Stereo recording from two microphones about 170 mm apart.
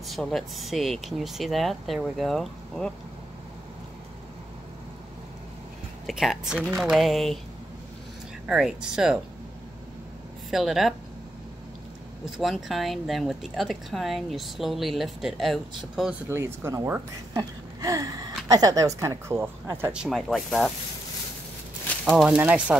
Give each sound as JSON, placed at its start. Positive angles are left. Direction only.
{"t": 0.0, "sound": "speech", "side_deg": 0}
{"t": 6.0, "sound": "speech", "side_deg": 0}
{"t": 8.5, "sound": "speech", "side_deg": -5}
{"t": 10.5, "sound": "speech", "side_deg": 0}
{"t": 12.4, "sound": "speech", "side_deg": 0}
{"t": 16.3, "sound": "speech", "side_deg": -15}
{"t": 22.0, "sound": "speech", "side_deg": -5}